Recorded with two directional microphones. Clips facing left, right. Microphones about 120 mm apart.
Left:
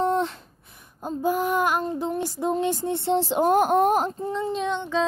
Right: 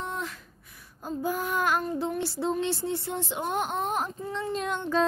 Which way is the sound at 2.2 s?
15° left (ahead or behind).